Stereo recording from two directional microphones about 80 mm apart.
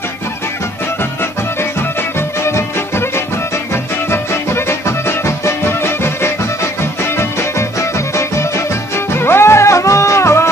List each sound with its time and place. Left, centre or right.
4.1 s music: left
8.2 s music: left